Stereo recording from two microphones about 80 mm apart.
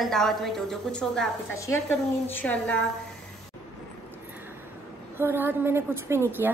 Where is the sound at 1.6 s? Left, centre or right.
Left.